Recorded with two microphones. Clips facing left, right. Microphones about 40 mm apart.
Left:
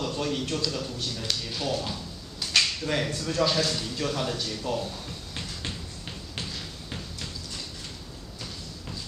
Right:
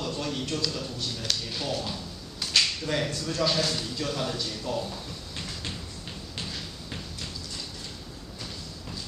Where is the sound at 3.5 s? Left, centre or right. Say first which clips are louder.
Left 1 dB; centre.